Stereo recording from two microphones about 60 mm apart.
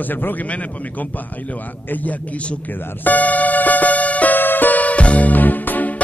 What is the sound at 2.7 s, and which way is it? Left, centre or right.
Music, left.